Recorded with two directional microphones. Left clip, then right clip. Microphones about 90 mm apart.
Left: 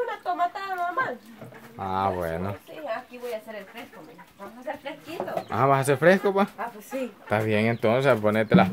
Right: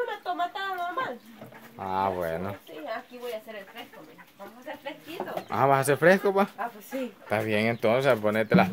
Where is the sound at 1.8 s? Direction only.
5° right (ahead or behind).